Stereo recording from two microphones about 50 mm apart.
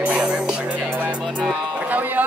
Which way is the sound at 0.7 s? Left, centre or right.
Right.